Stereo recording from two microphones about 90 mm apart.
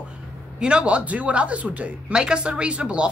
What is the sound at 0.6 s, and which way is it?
Speech, 10° right (ahead or behind).